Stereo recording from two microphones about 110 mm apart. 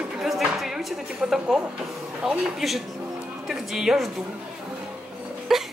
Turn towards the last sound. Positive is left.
turn(degrees=-5)  # may be behind; listen again after turning